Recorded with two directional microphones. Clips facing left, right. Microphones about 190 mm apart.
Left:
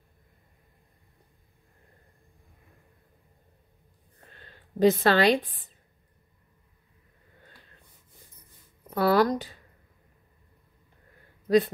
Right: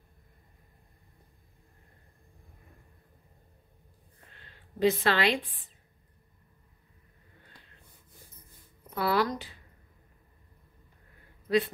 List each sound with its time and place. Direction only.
4.7 s a woman's voice: 40° left (ahead or behind)
8.9 s a woman's voice: 45° left (ahead or behind)
11.4 s speech: 40° left (ahead or behind)